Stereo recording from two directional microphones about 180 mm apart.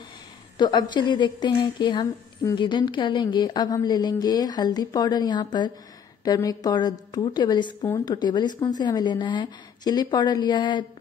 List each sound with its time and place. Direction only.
0.6 s a woman's voice: 25° left (ahead or behind)